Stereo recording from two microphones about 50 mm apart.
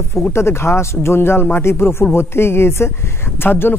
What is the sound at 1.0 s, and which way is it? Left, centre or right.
Speech, left.